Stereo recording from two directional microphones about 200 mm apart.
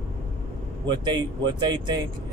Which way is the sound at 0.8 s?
20° right (ahead or behind).